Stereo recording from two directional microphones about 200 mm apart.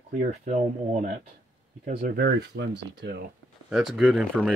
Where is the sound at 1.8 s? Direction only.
45° right (ahead or behind).